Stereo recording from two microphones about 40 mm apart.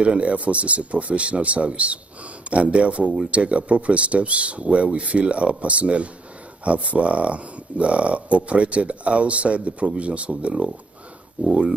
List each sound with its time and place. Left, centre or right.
0.0 s speech: right